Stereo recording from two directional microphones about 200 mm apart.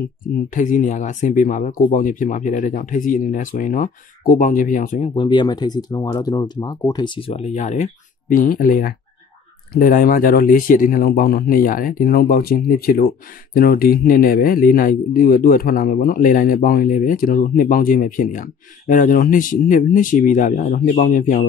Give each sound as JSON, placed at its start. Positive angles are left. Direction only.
{"t": 0.6, "sound": "speech", "side_deg": 40}
{"t": 5.1, "sound": "a man's voice", "side_deg": 25}